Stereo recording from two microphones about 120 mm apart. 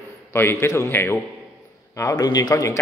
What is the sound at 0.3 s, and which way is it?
Speech, 20° left (ahead or behind).